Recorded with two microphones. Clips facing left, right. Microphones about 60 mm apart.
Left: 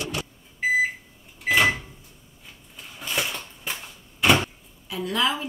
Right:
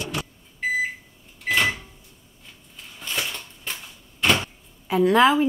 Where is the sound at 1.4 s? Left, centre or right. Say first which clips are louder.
Left 2 dB; centre.